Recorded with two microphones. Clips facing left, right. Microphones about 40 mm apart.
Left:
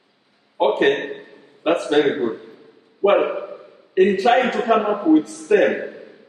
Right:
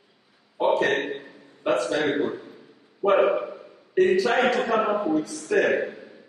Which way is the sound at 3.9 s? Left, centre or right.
Left.